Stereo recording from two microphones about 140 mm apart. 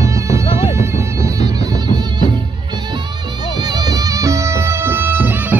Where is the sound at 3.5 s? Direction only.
30° right (ahead or behind).